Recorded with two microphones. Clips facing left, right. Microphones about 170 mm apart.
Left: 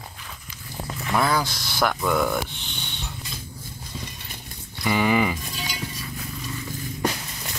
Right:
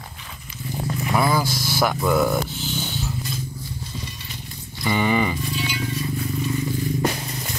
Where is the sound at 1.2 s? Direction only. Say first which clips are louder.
Right 1 dB; 10° right (ahead or behind).